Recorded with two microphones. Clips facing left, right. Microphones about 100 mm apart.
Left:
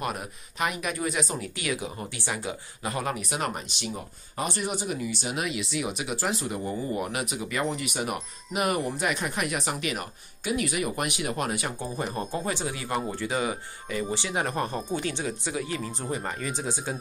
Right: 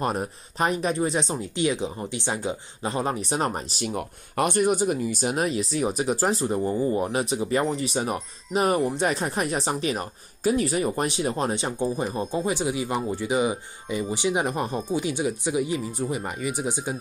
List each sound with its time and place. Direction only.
0.0 s speech: 35° right (ahead or behind)
3.9 s speech: 60° right (ahead or behind); by 11.7 s 30° right (ahead or behind)
11.8 s speech: 15° right (ahead or behind)